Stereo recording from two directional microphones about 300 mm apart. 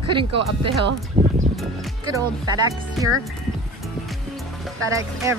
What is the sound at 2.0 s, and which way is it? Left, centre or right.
Speech, centre.